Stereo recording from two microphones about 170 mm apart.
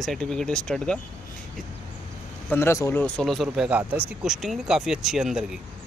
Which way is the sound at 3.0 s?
5° left (ahead or behind).